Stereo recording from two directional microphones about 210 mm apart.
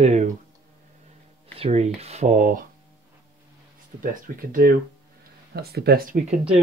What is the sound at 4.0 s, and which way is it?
Speech, 45° right (ahead or behind).